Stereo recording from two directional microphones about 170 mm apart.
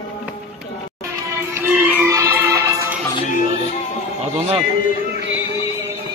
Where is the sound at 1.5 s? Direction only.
10° right (ahead or behind).